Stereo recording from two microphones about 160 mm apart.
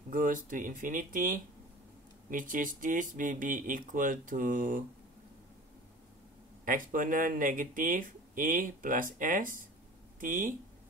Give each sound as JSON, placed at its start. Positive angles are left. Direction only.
{"t": 0.1, "sound": "speech", "side_deg": -60}
{"t": 6.6, "sound": "speech", "side_deg": -55}